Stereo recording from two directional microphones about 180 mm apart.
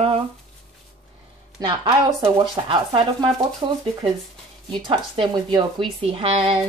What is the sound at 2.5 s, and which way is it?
A woman's voice, 25° right (ahead or behind).